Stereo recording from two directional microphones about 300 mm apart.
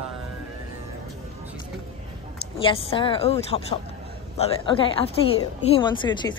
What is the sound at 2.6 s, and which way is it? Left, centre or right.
A woman's voice, centre.